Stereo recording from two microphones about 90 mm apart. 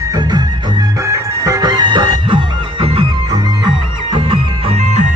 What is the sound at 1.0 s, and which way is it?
Music, 35° right (ahead or behind).